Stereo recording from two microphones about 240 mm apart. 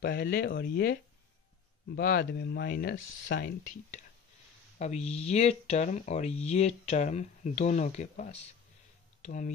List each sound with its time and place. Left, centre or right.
0.0 s speech: left
2.0 s speech: left